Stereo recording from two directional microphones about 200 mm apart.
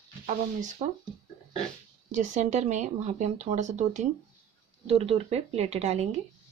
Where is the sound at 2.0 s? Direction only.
35° right (ahead or behind).